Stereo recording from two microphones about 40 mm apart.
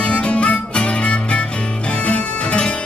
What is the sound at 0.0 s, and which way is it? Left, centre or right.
Music, left.